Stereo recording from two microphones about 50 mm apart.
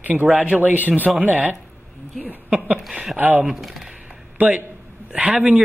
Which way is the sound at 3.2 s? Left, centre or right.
Right.